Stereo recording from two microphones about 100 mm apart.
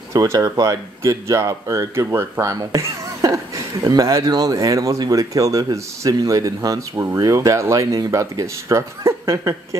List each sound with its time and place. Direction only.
0.1 s speech: 30° right (ahead or behind)